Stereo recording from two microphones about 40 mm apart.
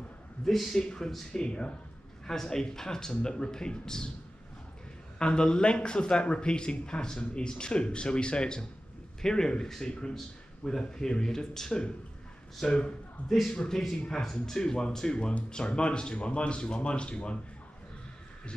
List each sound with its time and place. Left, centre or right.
0.5 s speech: centre
0.8 s a man's voice: centre
2.2 s speech: centre
5.2 s a man's voice: left